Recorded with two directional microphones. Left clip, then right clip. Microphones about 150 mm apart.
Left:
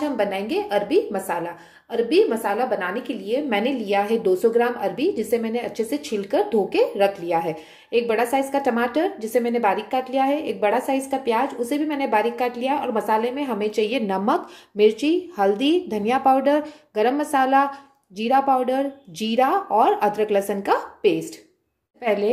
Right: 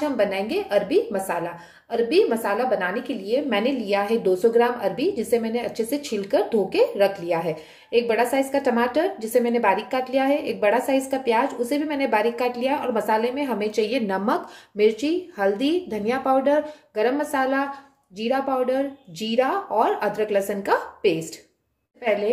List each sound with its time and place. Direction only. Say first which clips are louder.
0.0 s a woman's voice: right 1 dB; 15° left (ahead or behind)
22.0 s a woman's voice: left 1 dB; 40° left (ahead or behind)